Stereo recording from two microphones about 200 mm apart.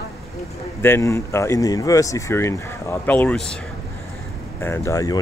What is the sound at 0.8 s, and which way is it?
Speech, 15° left (ahead or behind).